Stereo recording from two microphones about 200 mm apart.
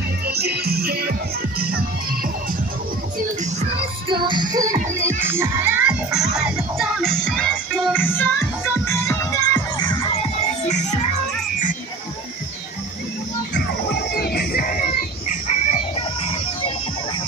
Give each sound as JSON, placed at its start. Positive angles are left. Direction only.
{"t": 0.3, "sound": "music", "side_deg": -50}
{"t": 4.1, "sound": "music", "side_deg": -25}
{"t": 13.6, "sound": "music", "side_deg": 55}